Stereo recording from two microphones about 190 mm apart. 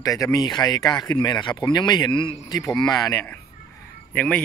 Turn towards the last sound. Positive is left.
turn(degrees=5)  # may be behind; listen again after turning